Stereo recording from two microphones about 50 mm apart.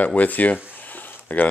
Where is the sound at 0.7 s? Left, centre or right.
Left.